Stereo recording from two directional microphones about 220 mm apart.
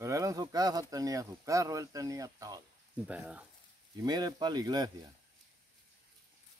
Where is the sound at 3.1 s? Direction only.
5° right (ahead or behind).